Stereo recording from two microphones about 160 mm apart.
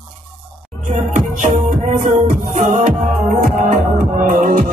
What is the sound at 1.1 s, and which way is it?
Music, 50° right (ahead or behind).